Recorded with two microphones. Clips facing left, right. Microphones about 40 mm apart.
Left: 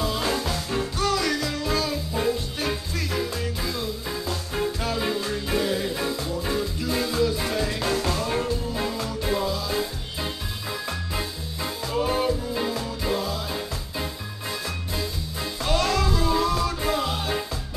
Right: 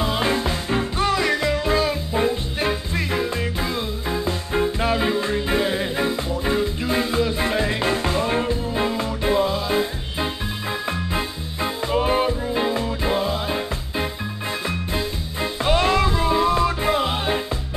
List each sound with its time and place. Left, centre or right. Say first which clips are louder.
0.0 s music: right 4 dB; right
15.6 s music: right 5 dB; right